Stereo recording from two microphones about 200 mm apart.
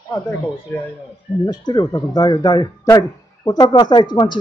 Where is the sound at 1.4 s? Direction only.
20° left (ahead or behind).